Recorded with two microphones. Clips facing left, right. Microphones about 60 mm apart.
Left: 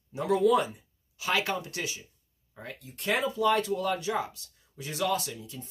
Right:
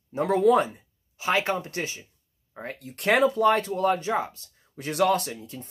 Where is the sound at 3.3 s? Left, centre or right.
Right.